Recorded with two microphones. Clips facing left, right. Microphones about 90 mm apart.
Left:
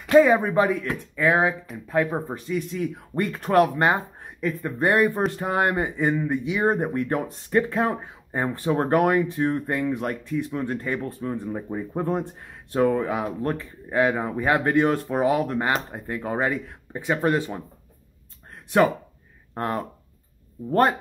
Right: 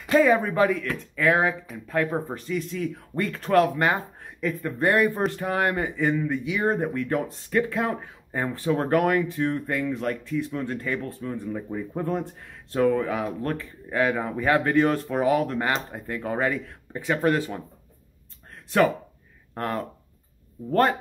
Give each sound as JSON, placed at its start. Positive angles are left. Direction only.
{"t": 0.2, "sound": "speech", "side_deg": 20}
{"t": 19.5, "sound": "speech", "side_deg": 20}